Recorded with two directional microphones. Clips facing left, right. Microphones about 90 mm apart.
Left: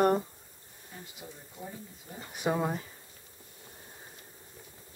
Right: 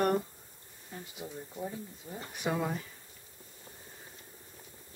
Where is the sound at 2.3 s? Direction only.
20° left (ahead or behind).